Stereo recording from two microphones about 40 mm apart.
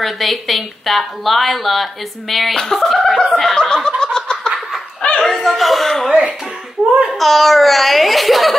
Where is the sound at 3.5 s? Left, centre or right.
Centre.